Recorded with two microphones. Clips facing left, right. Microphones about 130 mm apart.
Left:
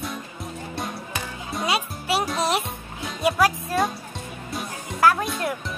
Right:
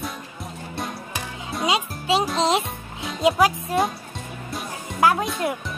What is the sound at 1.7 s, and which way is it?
Music, 20° right (ahead or behind).